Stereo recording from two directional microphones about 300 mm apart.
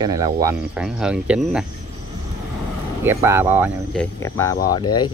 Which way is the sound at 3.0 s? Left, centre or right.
Centre.